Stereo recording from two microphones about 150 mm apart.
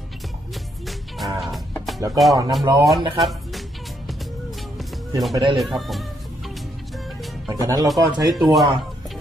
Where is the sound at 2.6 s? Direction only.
20° right (ahead or behind).